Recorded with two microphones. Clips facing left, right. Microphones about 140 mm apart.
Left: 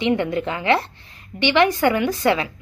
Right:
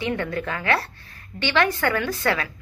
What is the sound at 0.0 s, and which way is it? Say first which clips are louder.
A woman's voice: left 6 dB; 20° left (ahead or behind).